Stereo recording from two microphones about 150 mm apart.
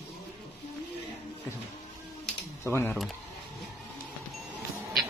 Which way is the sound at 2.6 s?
15° left (ahead or behind).